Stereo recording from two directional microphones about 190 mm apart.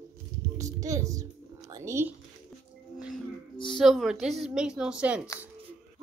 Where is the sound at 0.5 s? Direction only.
15° right (ahead or behind).